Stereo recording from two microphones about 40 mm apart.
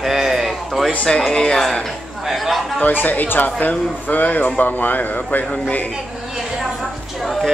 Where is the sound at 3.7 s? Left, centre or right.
Centre.